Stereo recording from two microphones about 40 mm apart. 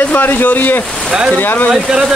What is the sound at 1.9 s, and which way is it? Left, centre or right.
Speech, centre.